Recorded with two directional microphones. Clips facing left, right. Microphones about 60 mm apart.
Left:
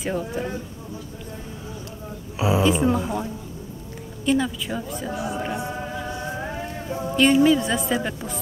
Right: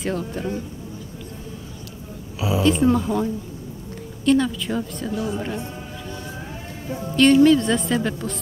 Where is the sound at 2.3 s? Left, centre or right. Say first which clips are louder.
Left 2 dB; left.